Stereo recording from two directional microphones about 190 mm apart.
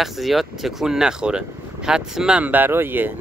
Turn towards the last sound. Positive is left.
turn(degrees=-10)  # may be behind; listen again after turning